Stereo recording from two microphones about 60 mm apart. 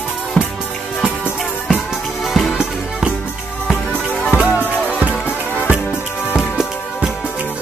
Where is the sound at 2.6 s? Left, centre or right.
Centre.